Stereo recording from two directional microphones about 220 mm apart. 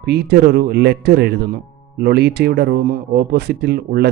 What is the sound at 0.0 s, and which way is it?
Speech, 45° right (ahead or behind).